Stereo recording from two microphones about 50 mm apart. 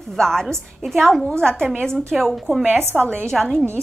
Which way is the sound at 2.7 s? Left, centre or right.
Right.